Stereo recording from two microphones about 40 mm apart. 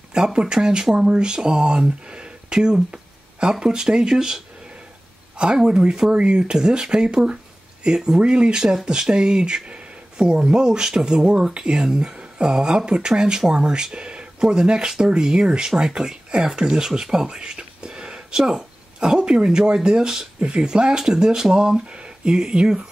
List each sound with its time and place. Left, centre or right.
0.1 s speech: right
5.4 s speech: right
18.4 s speech: centre
18.9 s speech: right